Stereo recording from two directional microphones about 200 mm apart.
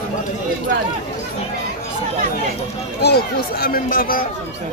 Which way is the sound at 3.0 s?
50° left (ahead or behind).